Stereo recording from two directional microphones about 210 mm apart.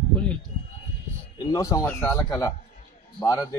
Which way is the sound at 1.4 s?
15° left (ahead or behind).